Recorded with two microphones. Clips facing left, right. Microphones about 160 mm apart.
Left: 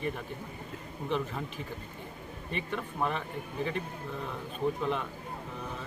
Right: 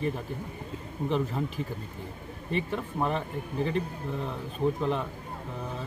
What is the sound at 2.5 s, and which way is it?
Speech, 35° right (ahead or behind).